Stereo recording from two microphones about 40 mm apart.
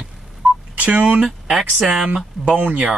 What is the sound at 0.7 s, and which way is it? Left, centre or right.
Speech, right.